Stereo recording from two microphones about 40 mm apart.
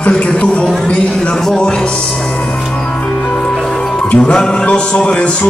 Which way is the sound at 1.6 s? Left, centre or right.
Left.